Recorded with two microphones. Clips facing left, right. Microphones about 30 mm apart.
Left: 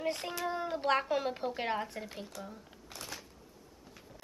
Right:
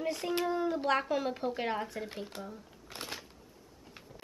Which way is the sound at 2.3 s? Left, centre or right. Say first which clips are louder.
Right 2 dB; right.